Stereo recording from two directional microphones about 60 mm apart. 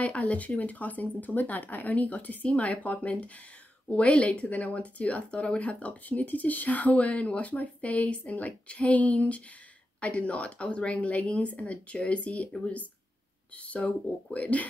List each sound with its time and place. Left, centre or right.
0.0 s speech: left